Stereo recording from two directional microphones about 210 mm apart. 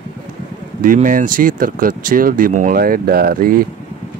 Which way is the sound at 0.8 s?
40° right (ahead or behind).